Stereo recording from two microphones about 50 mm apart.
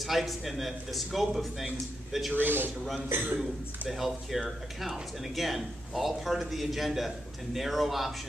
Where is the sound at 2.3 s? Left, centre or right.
Right.